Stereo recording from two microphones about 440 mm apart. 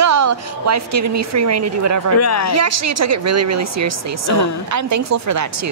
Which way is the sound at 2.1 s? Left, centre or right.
Left.